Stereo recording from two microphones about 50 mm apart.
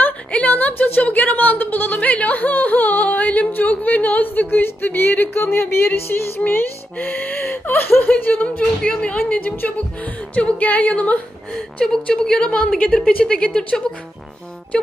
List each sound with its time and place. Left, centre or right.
0.3 s speech: left
6.5 s speech: left
8.5 s music: centre
9.1 s speech: left
10.3 s music: left
11.8 s a woman's voice: centre
13.1 s music: left